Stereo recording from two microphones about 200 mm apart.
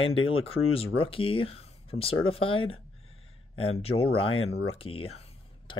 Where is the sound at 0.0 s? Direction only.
30° left (ahead or behind).